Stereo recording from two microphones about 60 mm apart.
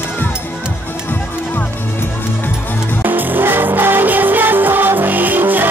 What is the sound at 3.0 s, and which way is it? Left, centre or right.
Music, right.